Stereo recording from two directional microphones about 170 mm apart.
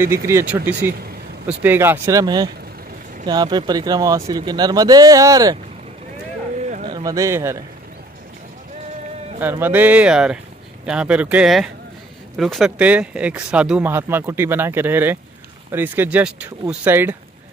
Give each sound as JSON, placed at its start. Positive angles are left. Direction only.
{"t": 0.3, "sound": "speech", "side_deg": -15}
{"t": 6.9, "sound": "speech", "side_deg": -20}
{"t": 9.4, "sound": "speech", "side_deg": -10}